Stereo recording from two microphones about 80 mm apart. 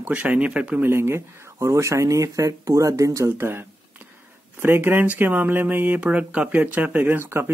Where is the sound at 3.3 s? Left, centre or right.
Right.